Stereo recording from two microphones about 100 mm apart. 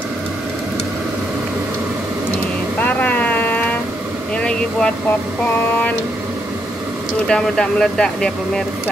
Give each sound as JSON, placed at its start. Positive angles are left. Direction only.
{"t": 2.8, "sound": "boat", "side_deg": 15}
{"t": 4.4, "sound": "speech", "side_deg": 10}
{"t": 7.2, "sound": "speech", "side_deg": 5}